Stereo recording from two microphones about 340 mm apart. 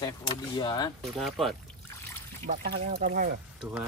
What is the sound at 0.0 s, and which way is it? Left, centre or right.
Speech, centre.